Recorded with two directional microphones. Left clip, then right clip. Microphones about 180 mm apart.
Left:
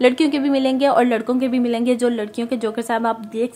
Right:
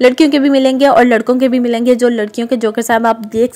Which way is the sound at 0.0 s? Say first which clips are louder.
Right 7 dB; 25° right (ahead or behind).